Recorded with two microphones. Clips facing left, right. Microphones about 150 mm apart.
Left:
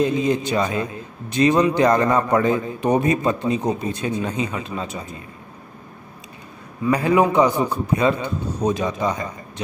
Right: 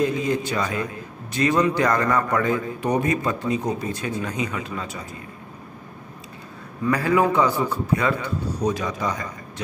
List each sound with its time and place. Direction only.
0.0 s a man's voice: 20° left (ahead or behind)
6.8 s a man's voice: 20° left (ahead or behind)